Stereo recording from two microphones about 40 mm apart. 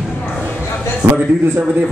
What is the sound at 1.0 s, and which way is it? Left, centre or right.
Speech, right.